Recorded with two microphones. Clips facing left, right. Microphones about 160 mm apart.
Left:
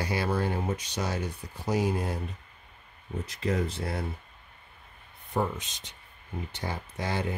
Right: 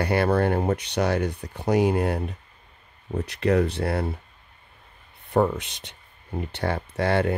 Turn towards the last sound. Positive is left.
turn(degrees=-65)  # may be behind; listen again after turning